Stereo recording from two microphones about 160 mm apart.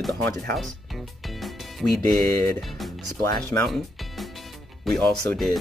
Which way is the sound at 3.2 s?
20° left (ahead or behind).